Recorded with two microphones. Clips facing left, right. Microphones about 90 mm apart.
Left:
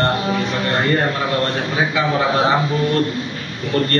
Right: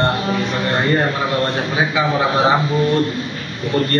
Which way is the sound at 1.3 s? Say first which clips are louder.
Right 1 dB; 10° right (ahead or behind).